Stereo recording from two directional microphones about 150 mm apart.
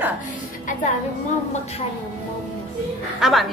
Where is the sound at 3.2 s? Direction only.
Centre (ahead or behind).